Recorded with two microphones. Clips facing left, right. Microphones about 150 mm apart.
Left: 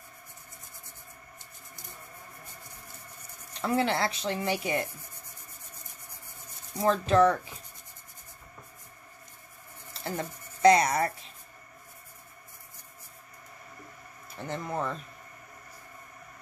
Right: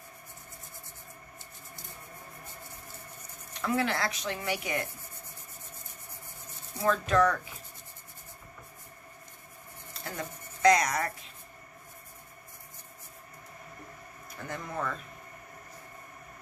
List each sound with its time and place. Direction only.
3.6 s speech: 30° left (ahead or behind)
6.9 s speech: 30° left (ahead or behind)
10.0 s speech: 30° left (ahead or behind)
14.4 s speech: 25° left (ahead or behind)